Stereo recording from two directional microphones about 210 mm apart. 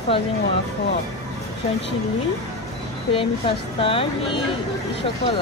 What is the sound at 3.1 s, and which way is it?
Speech, 25° left (ahead or behind).